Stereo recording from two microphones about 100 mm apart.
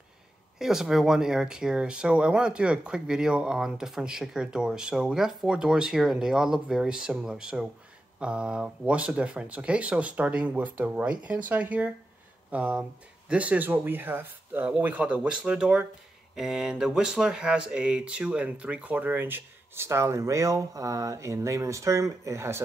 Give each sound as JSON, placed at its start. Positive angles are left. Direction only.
{"t": 0.6, "sound": "speech", "side_deg": -5}